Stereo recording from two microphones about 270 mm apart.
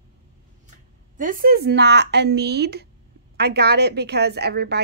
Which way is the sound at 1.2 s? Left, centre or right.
Right.